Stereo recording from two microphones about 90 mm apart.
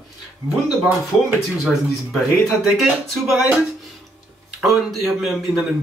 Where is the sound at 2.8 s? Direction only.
Centre (ahead or behind).